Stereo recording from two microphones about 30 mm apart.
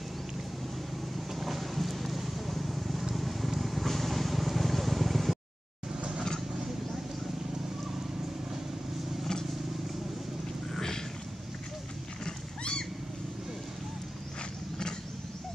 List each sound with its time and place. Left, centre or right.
1.3 s clip-clop: centre
3.2 s vehicle: centre
10.7 s a sound: centre
12.3 s wild animals: left